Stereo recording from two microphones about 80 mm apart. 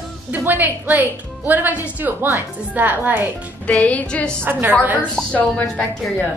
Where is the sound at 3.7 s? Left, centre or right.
Centre.